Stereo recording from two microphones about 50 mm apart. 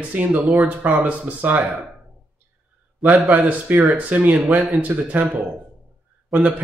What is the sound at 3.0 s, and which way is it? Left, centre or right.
A man's voice, right.